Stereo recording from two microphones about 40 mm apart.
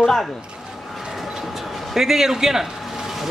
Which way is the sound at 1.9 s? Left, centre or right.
Centre.